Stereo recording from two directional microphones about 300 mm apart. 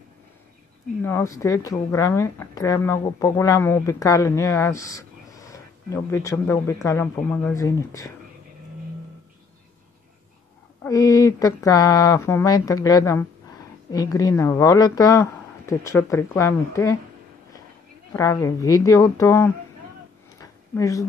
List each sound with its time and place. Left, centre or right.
1.0 s speech: centre
10.8 s speech: centre
18.1 s speech: centre
20.3 s a sound: centre